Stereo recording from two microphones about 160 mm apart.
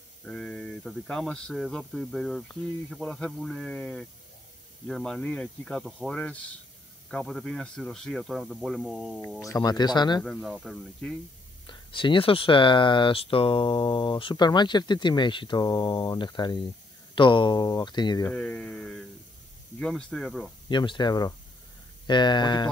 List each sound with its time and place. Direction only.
0.2 s speech: 5° left (ahead or behind)
9.4 s speech: 20° left (ahead or behind)
10.2 s speech: 5° left (ahead or behind)
11.6 s speech: 30° left (ahead or behind)
18.3 s speech: 5° left (ahead or behind)
20.6 s speech: 30° left (ahead or behind)